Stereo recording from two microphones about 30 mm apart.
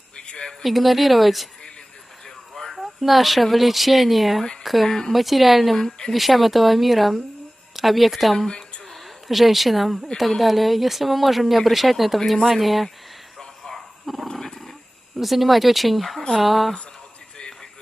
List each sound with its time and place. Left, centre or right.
0.3 s speech: left
0.6 s speech: centre
2.2 s a sound: centre
2.7 s speech: centre
4.8 s a woman's voice: centre
5.1 s speech: centre
14.1 s dog: centre
15.1 s speech: centre